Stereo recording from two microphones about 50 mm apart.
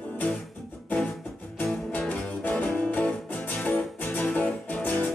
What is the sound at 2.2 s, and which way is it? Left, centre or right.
Music, left.